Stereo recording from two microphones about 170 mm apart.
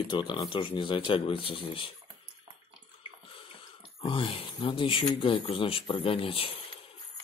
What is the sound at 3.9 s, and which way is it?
Speech, 30° left (ahead or behind).